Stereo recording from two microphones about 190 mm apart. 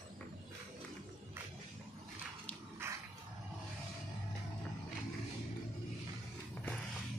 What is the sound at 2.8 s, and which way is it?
Dog, 10° right (ahead or behind).